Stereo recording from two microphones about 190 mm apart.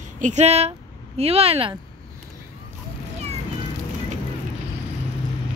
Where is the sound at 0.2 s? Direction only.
35° right (ahead or behind).